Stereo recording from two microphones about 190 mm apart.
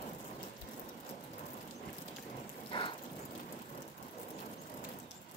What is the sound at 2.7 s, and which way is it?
Rain, 25° left (ahead or behind).